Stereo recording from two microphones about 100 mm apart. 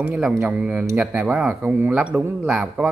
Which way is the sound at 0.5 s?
10° right (ahead or behind).